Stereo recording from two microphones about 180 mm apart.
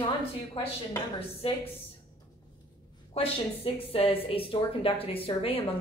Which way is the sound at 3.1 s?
35° left (ahead or behind).